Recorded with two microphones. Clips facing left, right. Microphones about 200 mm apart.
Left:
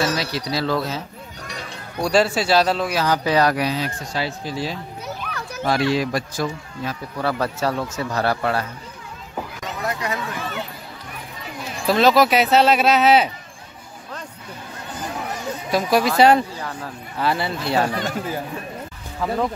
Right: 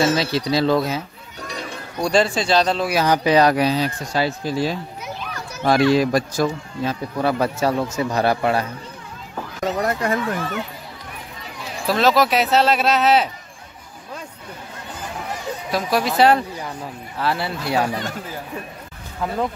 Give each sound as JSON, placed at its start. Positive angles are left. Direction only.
{"t": 0.0, "sound": "speech", "side_deg": -25}
{"t": 2.0, "sound": "speech", "side_deg": 5}
{"t": 2.9, "sound": "speech", "side_deg": -15}
{"t": 5.2, "sound": "children playing", "side_deg": 55}
{"t": 5.7, "sound": "a man's voice", "side_deg": -45}
{"t": 6.8, "sound": "a man's voice", "side_deg": -20}
{"t": 9.7, "sound": "a sound", "side_deg": -50}
{"t": 11.8, "sound": "speech", "side_deg": 0}
{"t": 15.7, "sound": "speech", "side_deg": 0}
{"t": 16.5, "sound": "speech", "side_deg": -10}
{"t": 17.2, "sound": "speech", "side_deg": 0}
{"t": 19.2, "sound": "speech", "side_deg": 0}